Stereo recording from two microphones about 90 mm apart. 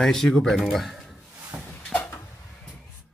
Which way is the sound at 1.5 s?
15° right (ahead or behind).